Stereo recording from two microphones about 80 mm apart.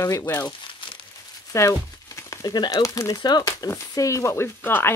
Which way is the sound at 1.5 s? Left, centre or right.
Left.